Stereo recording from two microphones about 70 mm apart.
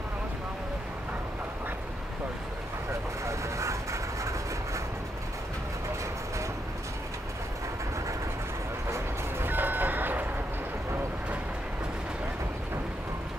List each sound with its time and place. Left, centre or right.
3.3 s vehicle: right
9.5 s vehicle: right